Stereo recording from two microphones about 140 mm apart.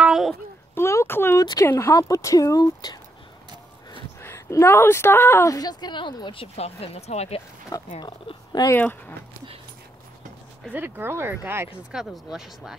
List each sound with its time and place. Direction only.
0.0 s a sound: centre (ahead or behind)
0.7 s a sound: 20° left (ahead or behind)
1.4 s a woman's voice: 25° left (ahead or behind)
4.2 s a woman's voice: 20° left (ahead or behind)
6.4 s a woman's voice: 45° left (ahead or behind)
7.9 s speech: 35° left (ahead or behind)
8.7 s speech: 10° left (ahead or behind)
10.6 s speech: 10° right (ahead or behind)
11.9 s speech: 5° right (ahead or behind)